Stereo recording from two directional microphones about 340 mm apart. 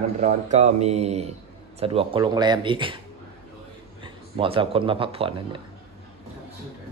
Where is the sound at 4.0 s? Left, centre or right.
Centre.